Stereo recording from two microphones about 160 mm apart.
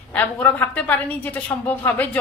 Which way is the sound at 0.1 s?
10° left (ahead or behind).